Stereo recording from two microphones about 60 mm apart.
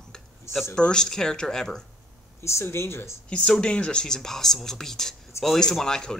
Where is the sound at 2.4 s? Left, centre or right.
Left.